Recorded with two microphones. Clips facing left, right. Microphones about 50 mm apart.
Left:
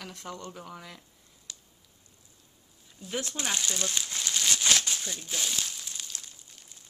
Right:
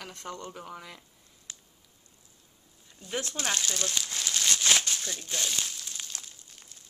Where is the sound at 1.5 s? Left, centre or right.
Right.